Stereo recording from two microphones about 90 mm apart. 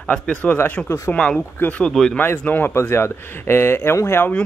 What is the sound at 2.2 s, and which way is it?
Speech, 20° left (ahead or behind).